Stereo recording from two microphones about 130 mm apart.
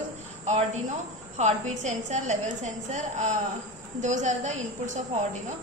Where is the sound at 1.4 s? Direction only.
65° right (ahead or behind).